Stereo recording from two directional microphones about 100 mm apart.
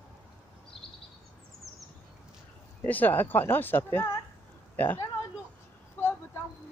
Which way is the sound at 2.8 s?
15° left (ahead or behind).